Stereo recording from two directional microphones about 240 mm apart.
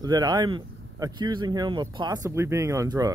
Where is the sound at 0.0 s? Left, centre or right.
Centre.